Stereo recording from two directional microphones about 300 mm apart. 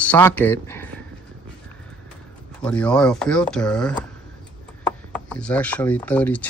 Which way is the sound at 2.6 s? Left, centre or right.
Centre.